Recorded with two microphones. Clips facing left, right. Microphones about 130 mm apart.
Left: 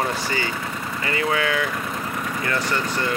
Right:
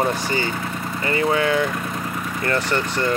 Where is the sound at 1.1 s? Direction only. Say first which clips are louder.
Right 4 dB; 30° right (ahead or behind).